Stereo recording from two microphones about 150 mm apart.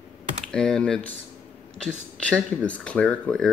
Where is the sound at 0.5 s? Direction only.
5° left (ahead or behind).